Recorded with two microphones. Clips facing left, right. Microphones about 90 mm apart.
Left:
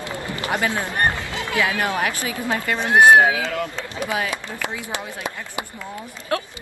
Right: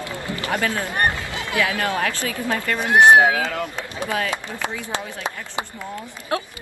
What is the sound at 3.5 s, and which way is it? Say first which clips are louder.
Speech: left 1 dB; 20° right (ahead or behind).